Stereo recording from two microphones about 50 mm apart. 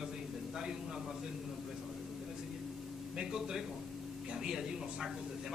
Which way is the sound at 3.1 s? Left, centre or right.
Centre.